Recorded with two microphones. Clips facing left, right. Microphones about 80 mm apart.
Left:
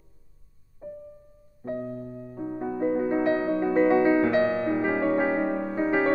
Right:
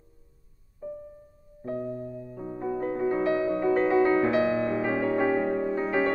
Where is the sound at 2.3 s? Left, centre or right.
Centre.